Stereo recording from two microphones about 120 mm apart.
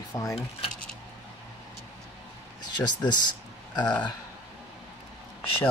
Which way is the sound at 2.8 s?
35° left (ahead or behind).